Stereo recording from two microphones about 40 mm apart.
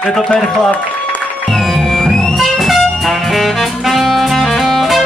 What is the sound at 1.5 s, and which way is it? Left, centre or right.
Music, centre.